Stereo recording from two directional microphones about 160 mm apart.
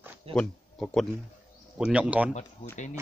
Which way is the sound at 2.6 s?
45° left (ahead or behind).